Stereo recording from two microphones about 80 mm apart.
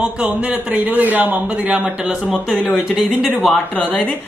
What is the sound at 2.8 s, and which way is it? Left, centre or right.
Speech, centre.